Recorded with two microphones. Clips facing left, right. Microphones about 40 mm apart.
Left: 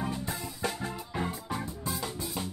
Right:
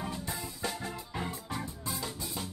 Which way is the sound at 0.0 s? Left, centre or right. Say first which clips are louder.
Left 3 dB; centre.